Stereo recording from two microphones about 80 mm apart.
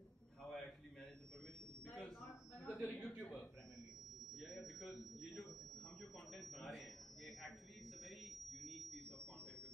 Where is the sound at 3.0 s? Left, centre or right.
Left.